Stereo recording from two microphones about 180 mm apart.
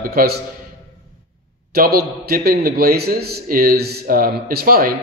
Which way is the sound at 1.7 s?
55° right (ahead or behind).